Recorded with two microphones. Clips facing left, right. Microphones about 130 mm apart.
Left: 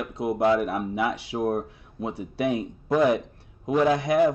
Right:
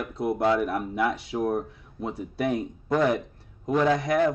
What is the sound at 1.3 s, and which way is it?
Speech, 30° left (ahead or behind).